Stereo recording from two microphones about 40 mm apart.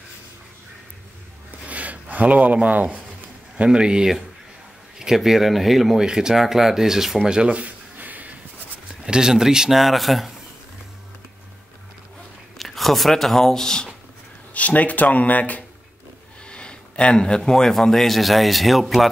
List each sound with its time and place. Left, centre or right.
1.7 s a sound: right
3.5 s speech: right
4.9 s speech: centre
5.9 s speech: centre
7.4 s speech: right
8.0 s a sound: right
9.0 s speech: centre
9.8 s speech: centre
12.5 s speech: centre
14.5 s speech: left
16.4 s a sound: left
17.7 s speech: centre